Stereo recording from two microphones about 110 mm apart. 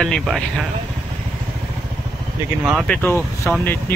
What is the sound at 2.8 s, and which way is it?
Speech, 15° left (ahead or behind).